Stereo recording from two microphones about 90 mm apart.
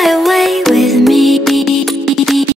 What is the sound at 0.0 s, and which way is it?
Music, centre (ahead or behind).